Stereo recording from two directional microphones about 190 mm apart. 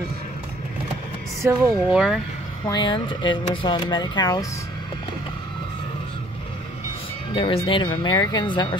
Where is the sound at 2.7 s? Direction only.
20° left (ahead or behind).